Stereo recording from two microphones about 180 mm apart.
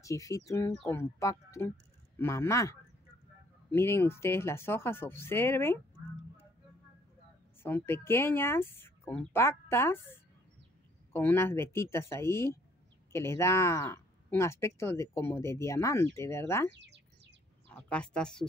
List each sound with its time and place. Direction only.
0.0 s speech: 15° left (ahead or behind)
7.6 s speech: 10° left (ahead or behind)
16.7 s bird: 75° right (ahead or behind)
17.6 s speech: 10° left (ahead or behind)